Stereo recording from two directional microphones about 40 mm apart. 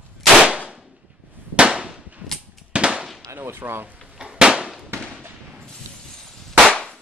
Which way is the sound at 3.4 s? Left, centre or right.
Right.